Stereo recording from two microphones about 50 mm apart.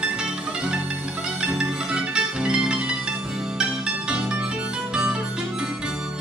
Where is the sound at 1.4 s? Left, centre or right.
Centre.